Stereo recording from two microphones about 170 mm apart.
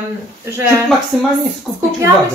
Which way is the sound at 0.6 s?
15° right (ahead or behind).